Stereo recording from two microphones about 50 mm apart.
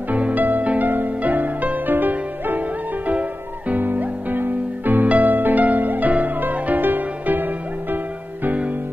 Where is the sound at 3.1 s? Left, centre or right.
Right.